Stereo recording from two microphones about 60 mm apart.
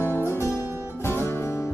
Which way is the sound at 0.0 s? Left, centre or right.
Left.